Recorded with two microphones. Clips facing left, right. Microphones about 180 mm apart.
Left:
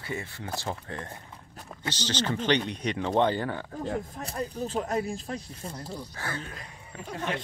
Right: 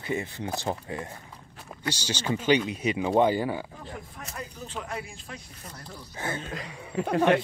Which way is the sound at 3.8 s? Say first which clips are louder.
Left 8 dB; 35° left (ahead or behind).